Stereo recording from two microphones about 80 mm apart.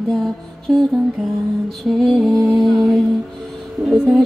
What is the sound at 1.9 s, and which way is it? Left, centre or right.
Music, centre.